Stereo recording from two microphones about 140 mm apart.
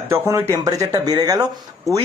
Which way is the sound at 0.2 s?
15° right (ahead or behind).